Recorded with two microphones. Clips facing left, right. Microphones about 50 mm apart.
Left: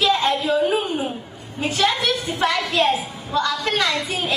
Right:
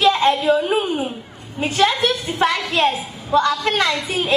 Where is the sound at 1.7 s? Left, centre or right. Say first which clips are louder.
Right 3 dB; right.